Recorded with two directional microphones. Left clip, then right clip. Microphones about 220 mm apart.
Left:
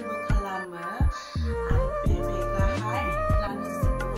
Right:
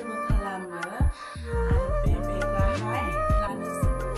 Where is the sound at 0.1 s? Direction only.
Centre (ahead or behind).